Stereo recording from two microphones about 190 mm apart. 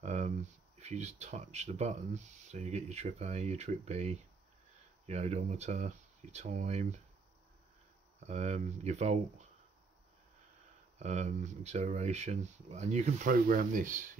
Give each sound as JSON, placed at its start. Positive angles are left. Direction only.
{"t": 0.0, "sound": "a sound", "side_deg": -35}
{"t": 0.7, "sound": "speech", "side_deg": -35}
{"t": 8.2, "sound": "speech", "side_deg": -35}
{"t": 11.0, "sound": "speech", "side_deg": -35}